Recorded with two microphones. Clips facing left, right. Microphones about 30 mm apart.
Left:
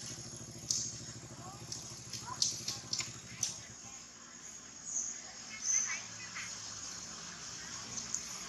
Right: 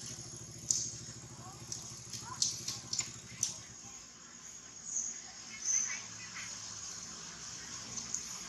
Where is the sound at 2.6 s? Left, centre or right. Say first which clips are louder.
Left 1 dB; centre.